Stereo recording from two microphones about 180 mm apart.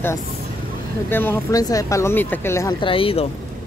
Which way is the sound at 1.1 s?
10° left (ahead or behind).